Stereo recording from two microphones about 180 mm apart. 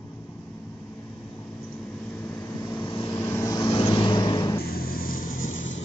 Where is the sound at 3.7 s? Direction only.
30° left (ahead or behind).